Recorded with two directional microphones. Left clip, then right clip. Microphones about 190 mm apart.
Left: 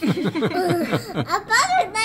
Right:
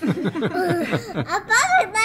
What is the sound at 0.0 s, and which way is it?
Speech, centre (ahead or behind).